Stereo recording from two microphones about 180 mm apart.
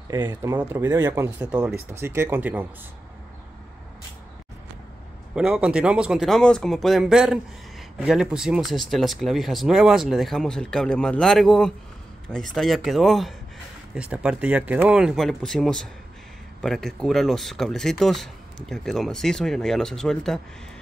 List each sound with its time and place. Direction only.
0.1 s speech: 15° right (ahead or behind)
5.3 s speech: 5° right (ahead or behind)